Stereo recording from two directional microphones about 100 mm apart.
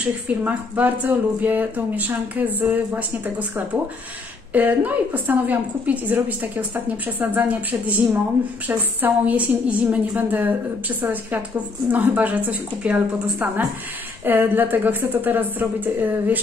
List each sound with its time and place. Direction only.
0.4 s a woman's voice: 15° right (ahead or behind)